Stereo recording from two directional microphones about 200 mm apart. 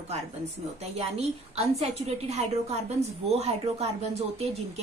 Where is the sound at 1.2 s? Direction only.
30° right (ahead or behind).